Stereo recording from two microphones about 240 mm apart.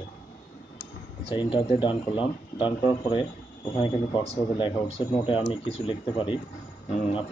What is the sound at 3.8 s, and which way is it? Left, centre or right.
Speech, left.